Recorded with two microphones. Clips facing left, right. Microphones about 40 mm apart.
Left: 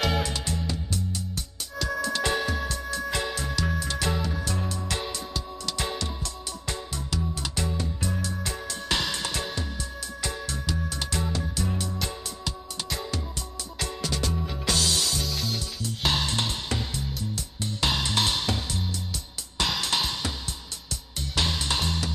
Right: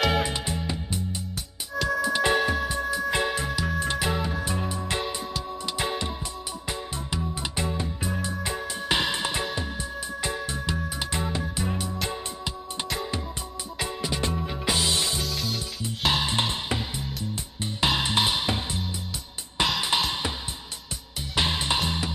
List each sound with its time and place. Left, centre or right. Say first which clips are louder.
0.2 s music: right 2 dB; right
2.8 s music: right 4 dB; centre
3.1 s music: right 4 dB; right
15.2 s music: right 1 dB; centre
16.1 s music: right 2 dB; centre
21.4 s music: right 2 dB; right